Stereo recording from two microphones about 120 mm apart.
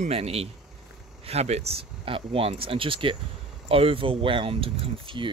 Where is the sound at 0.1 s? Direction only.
55° right (ahead or behind).